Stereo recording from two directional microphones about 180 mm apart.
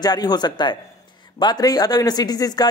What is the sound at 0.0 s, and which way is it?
Speech, 20° left (ahead or behind).